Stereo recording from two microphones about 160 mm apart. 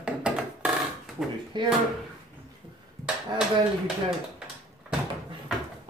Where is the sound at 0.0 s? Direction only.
5° right (ahead or behind).